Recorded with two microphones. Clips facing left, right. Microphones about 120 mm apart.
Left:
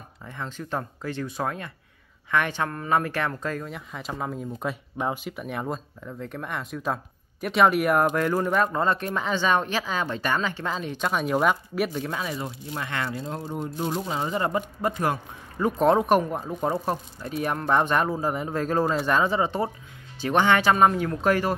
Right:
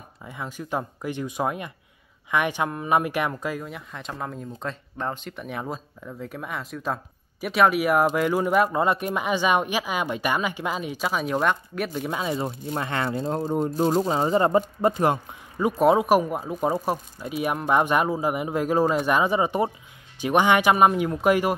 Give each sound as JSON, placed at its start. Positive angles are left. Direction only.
{"t": 0.2, "sound": "speech", "side_deg": -10}
{"t": 12.0, "sound": "speech", "side_deg": -20}
{"t": 12.4, "sound": "speech", "side_deg": -35}
{"t": 13.1, "sound": "speech", "side_deg": -40}
{"t": 15.8, "sound": "speech", "side_deg": -5}